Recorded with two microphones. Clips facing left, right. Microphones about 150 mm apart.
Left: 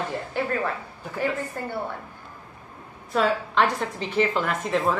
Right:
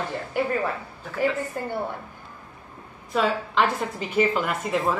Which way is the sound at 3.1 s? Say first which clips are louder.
Left 1 dB; centre (ahead or behind).